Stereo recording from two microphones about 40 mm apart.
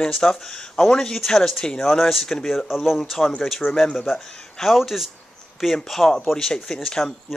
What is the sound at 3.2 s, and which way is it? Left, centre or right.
Speech, centre.